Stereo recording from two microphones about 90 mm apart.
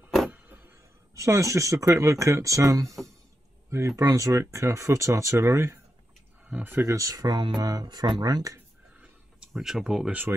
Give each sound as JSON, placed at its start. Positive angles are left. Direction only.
{"t": 0.3, "sound": "speech", "side_deg": -20}
{"t": 6.4, "sound": "speech", "side_deg": -20}
{"t": 8.5, "sound": "a sound", "side_deg": -15}
{"t": 9.5, "sound": "speech", "side_deg": -5}